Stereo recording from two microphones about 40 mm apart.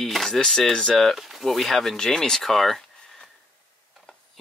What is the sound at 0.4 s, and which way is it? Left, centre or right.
Speech, centre.